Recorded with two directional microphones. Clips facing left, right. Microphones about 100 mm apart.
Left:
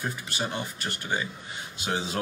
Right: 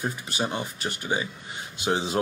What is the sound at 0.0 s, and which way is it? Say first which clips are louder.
Speech: right 3 dB; 20° right (ahead or behind).